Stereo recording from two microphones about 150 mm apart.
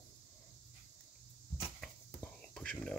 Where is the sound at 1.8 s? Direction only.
5° left (ahead or behind).